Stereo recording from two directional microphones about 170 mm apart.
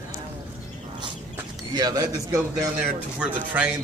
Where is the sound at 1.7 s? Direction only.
25° right (ahead or behind).